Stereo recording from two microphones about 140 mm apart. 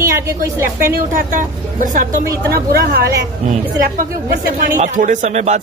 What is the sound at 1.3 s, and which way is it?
Speech, 65° right (ahead or behind).